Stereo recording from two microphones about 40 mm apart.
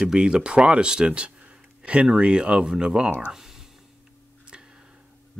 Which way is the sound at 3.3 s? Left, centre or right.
Centre.